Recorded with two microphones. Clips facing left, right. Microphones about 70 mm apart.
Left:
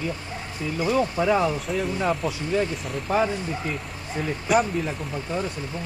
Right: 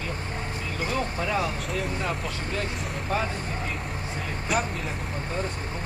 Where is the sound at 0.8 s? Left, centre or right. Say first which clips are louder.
Left 7 dB; centre.